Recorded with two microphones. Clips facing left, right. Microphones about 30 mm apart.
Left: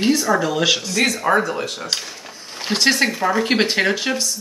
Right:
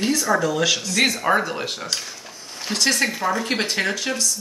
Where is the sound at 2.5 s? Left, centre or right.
Left.